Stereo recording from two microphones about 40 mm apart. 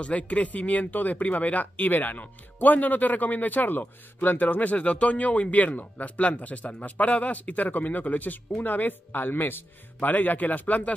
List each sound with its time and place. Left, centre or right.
0.0 s speech: left
9.9 s speech: left